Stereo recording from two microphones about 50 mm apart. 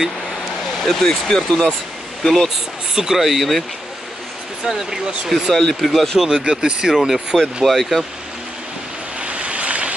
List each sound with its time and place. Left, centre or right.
0.8 s speech: centre
2.2 s speech: centre
2.9 s speech: centre
4.6 s speech: centre
5.3 s speech: centre
6.1 s speech: centre
7.6 s speech: centre
9.2 s waves: right